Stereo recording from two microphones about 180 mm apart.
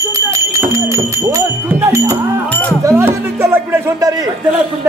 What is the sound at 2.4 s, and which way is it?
Livestock, 10° left (ahead or behind).